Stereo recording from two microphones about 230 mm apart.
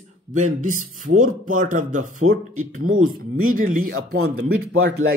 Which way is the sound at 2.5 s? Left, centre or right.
Right.